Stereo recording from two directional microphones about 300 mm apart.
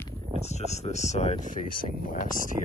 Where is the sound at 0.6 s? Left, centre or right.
Left.